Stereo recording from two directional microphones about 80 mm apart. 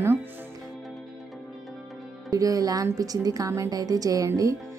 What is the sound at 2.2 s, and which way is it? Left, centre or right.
Speech, right.